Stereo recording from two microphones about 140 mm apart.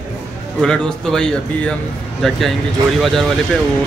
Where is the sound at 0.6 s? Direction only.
5° left (ahead or behind).